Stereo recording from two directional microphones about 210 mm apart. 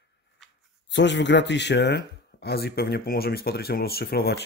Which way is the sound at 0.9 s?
55° left (ahead or behind).